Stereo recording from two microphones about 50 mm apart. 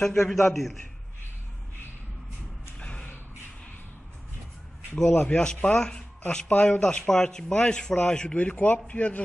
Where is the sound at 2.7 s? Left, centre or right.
Left.